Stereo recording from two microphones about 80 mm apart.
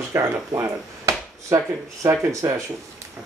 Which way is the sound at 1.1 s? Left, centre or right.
Right.